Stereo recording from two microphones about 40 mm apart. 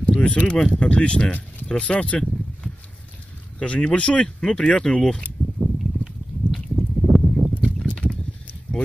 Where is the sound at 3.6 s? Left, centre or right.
Left.